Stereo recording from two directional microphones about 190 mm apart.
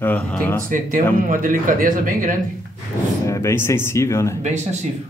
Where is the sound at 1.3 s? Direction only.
45° right (ahead or behind).